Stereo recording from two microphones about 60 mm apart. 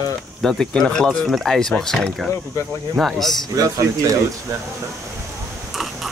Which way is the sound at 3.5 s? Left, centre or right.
Right.